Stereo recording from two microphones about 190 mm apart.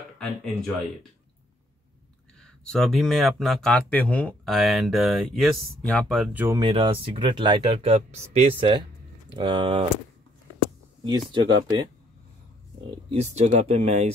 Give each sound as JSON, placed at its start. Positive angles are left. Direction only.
{"t": 0.2, "sound": "speech", "side_deg": 0}
{"t": 2.4, "sound": "speech", "side_deg": 5}
{"t": 6.4, "sound": "speech", "side_deg": -15}
{"t": 6.7, "sound": "speech", "side_deg": -30}
{"t": 11.1, "sound": "speech", "side_deg": -25}
{"t": 13.1, "sound": "speech", "side_deg": -35}